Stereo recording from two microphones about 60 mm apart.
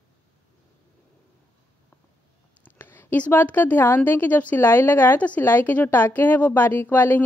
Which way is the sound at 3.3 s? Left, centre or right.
Left.